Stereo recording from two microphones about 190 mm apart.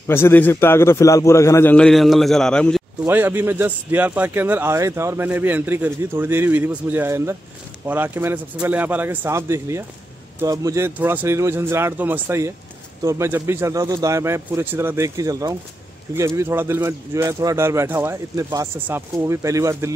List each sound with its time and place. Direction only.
0.0 s a man's voice: 10° left (ahead or behind)
3.1 s a man's voice: 10° right (ahead or behind)